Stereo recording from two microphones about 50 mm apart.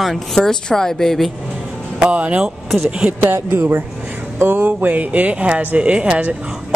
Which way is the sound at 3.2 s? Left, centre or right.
Right.